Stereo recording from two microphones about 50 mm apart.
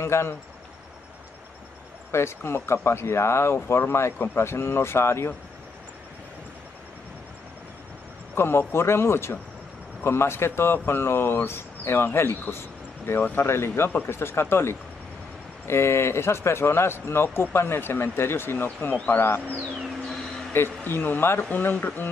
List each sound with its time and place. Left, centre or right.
0.0 s speech: left
2.1 s speech: left
8.4 s speech: left
13.5 s speech: left
20.5 s speech: left
21.4 s speech: left
21.6 s speech: left